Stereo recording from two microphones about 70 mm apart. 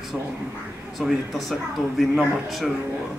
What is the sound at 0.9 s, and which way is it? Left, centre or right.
Speech, centre.